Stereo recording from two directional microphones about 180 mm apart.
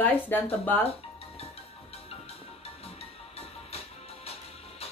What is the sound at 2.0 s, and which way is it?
Music, 35° left (ahead or behind).